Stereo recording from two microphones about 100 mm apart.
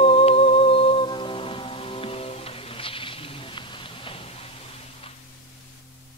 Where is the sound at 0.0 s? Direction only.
90° left.